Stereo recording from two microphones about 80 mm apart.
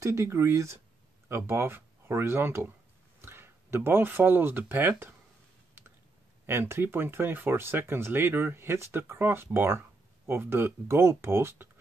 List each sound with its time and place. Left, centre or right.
0.0 s speech: right
6.4 s speech: right